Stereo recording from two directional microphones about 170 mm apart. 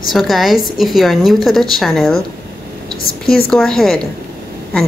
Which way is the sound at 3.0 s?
60° left (ahead or behind).